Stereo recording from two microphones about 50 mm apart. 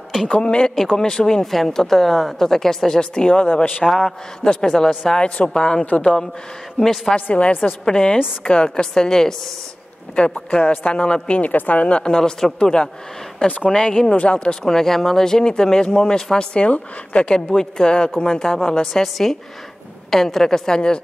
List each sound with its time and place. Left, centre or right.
0.3 s a woman's voice: centre
6.8 s speech: centre
7.2 s a man's voice: left
7.8 s a woman's voice: centre
10.3 s a man's voice: left
14.6 s a woman's voice: centre; by 17.3 s left
17.5 s speech: centre